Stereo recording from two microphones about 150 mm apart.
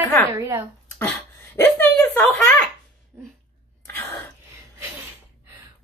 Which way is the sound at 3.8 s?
15° left (ahead or behind).